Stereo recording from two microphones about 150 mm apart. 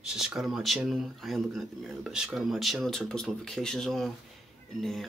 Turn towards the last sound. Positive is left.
turn(degrees=0)  # may be behind; listen again after turning